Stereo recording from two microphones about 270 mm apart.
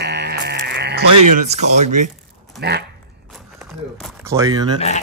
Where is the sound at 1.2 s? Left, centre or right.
Right.